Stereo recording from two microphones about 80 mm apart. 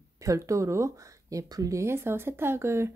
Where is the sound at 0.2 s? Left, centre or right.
Right.